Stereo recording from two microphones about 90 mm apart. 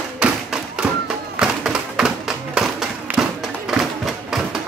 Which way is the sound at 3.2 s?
5° right (ahead or behind).